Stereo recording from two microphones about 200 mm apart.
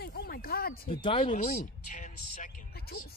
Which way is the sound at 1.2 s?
40° left (ahead or behind).